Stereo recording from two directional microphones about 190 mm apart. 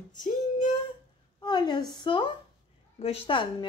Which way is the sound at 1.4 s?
25° left (ahead or behind).